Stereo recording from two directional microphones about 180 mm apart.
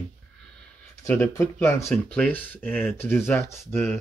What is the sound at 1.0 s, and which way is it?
Speech, 15° left (ahead or behind).